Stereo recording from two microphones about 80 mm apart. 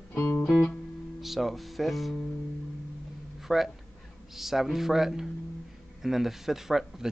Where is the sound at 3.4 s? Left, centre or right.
Centre.